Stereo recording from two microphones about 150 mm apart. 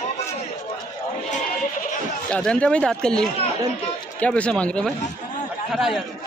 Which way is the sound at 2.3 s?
5° left (ahead or behind).